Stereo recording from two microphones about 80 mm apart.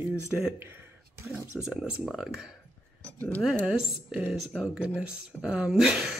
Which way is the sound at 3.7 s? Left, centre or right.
Centre.